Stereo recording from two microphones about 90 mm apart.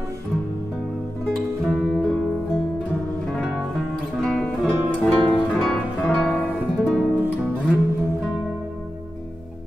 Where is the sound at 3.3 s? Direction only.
Centre (ahead or behind); by 6.5 s 20° left (ahead or behind).